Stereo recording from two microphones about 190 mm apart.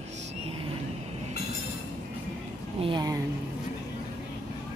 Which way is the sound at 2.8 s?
20° right (ahead or behind).